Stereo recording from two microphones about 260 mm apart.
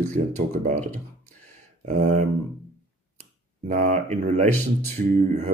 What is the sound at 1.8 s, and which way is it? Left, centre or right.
Speech, right.